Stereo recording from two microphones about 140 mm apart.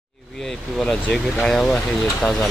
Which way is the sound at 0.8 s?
5° left (ahead or behind).